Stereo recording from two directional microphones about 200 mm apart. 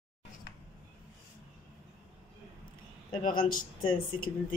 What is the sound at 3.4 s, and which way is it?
Speech, 45° left (ahead or behind).